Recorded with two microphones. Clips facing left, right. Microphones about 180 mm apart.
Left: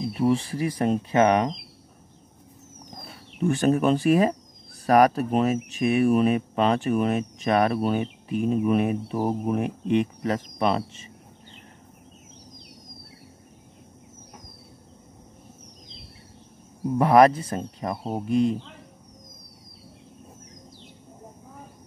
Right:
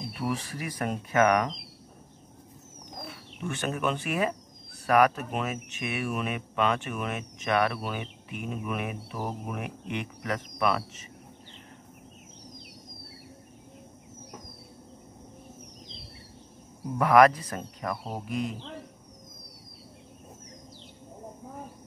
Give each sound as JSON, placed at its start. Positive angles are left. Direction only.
{"t": 0.1, "sound": "speech", "side_deg": 30}
{"t": 3.1, "sound": "speech", "side_deg": 35}
{"t": 17.0, "sound": "speech", "side_deg": 30}